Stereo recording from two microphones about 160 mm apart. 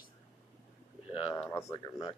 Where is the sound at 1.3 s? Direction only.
15° left (ahead or behind).